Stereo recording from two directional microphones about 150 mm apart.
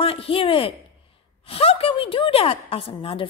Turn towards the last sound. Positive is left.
turn(degrees=40)  # may be behind; listen again after turning